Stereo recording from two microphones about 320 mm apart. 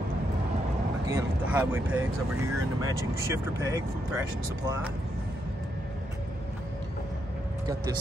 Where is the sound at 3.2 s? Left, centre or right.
Centre.